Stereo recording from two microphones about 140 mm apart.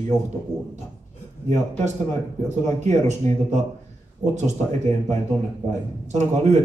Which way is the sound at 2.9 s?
55° right (ahead or behind).